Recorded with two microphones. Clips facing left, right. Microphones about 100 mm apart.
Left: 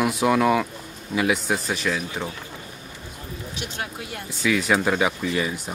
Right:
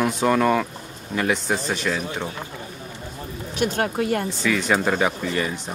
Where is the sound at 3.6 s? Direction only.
50° right (ahead or behind).